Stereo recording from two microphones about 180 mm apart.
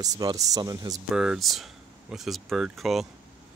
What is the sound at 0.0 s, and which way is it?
Speech, 20° right (ahead or behind).